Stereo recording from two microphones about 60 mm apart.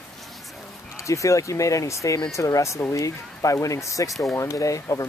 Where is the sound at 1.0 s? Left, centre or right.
Left.